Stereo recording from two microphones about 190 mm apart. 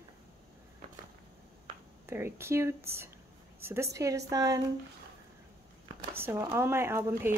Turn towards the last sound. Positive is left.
turn(degrees=-10)  # may be behind; listen again after turning